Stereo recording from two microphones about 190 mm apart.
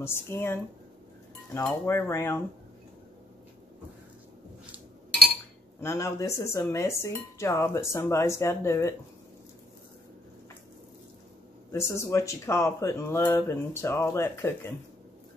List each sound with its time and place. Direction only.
0.0 s speech: 10° left (ahead or behind)
5.8 s speech: 15° left (ahead or behind)
11.7 s speech: 15° left (ahead or behind)